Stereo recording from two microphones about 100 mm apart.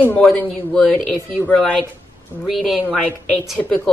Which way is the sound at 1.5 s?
10° left (ahead or behind).